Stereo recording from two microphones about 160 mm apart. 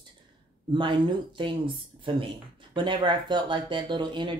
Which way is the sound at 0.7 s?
30° right (ahead or behind).